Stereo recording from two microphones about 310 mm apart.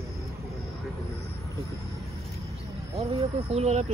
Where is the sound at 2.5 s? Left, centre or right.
Centre.